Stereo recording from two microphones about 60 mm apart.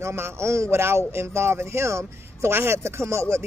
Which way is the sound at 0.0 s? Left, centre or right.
Right.